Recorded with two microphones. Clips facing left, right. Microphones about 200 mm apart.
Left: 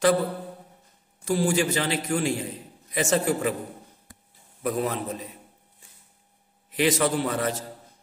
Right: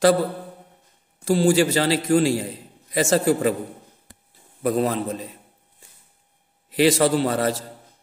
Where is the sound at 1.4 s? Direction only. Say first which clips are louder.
Right 6 dB; 30° right (ahead or behind).